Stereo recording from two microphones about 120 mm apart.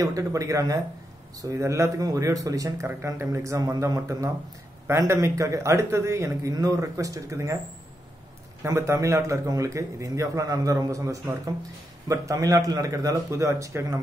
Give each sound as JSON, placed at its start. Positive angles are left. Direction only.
{"t": 0.0, "sound": "a man's voice", "side_deg": -25}
{"t": 8.6, "sound": "a man's voice", "side_deg": -25}